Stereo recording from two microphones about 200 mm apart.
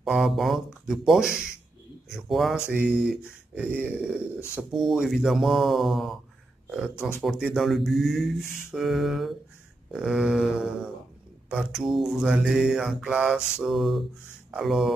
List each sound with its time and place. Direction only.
0.0 s speech: centre (ahead or behind)